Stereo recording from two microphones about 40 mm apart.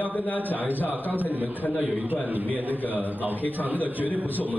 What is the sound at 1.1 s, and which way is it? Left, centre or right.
Speech, right.